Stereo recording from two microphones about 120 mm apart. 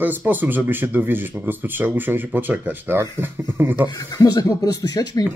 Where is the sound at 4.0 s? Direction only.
30° left (ahead or behind).